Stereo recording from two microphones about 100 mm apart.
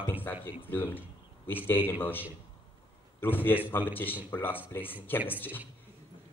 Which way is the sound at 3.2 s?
20° left (ahead or behind).